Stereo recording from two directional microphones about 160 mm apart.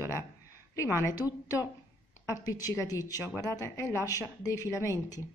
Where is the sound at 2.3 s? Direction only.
20° left (ahead or behind).